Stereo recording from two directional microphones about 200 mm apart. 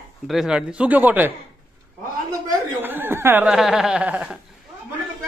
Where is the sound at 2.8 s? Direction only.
10° right (ahead or behind).